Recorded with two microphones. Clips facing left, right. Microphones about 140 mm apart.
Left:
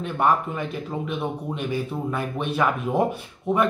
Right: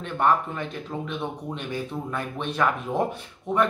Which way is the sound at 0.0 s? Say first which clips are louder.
Left 1 dB; 10° left (ahead or behind).